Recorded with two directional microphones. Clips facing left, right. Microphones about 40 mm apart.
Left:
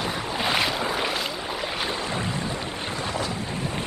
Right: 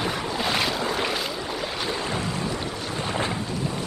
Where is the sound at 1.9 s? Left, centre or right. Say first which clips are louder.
Right 1 dB; left.